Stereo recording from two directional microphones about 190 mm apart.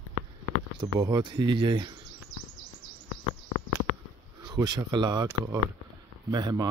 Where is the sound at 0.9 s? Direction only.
20° right (ahead or behind).